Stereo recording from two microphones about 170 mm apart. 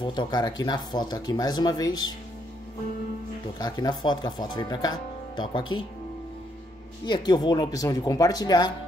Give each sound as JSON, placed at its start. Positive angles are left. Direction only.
{"t": 0.0, "sound": "speech", "side_deg": 25}
{"t": 3.5, "sound": "speech", "side_deg": 20}
{"t": 7.1, "sound": "speech", "side_deg": 25}